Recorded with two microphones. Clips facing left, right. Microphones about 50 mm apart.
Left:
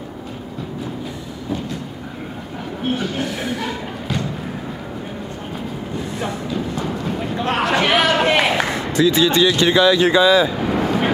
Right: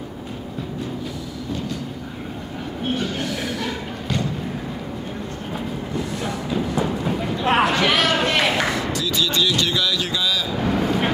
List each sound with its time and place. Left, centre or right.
2.8 s train: centre
3.3 s speech: left
6.5 s music: centre
7.4 s a sound: centre
7.7 s a sound: centre
8.7 s speech: left
10.5 s vehicle: centre